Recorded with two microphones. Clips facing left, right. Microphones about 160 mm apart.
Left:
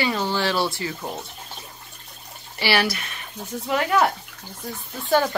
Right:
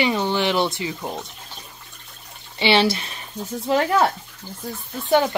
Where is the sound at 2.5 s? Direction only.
25° right (ahead or behind).